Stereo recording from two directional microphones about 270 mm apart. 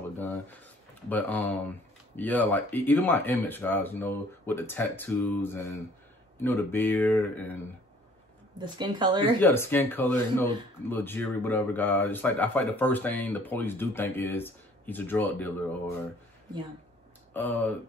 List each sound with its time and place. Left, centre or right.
0.3 s a sound: centre
2.1 s speech: centre
8.5 s speech: centre
9.2 s speech: centre
17.3 s speech: centre